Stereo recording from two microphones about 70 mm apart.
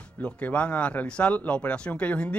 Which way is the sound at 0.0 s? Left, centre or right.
Centre.